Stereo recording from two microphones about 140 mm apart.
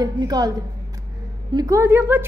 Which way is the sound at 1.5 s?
20° right (ahead or behind).